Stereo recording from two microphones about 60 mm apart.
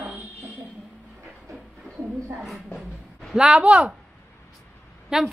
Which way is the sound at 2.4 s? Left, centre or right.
Centre.